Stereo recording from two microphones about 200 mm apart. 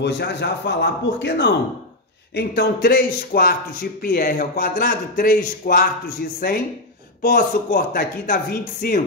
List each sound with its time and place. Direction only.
0.0 s a man's voice: 55° left (ahead or behind)